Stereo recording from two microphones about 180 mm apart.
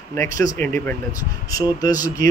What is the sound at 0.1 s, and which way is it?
Speech, 15° left (ahead or behind).